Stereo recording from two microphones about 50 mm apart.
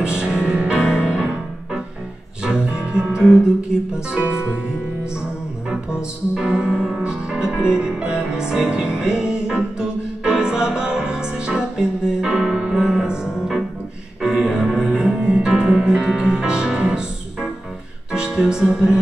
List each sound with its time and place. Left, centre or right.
0.0 s music: centre
5.7 s music: centre
6.7 s music: centre
7.0 s music: centre
15.0 s music: centre